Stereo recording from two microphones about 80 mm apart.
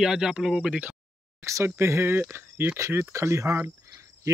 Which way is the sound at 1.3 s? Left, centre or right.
Right.